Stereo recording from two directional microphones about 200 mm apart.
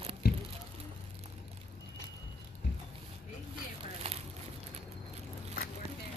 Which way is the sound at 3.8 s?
30° right (ahead or behind).